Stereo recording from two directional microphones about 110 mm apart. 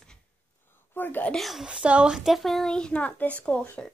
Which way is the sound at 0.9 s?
20° left (ahead or behind).